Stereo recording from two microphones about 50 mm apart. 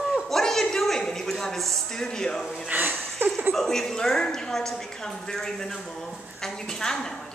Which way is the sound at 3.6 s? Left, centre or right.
Centre.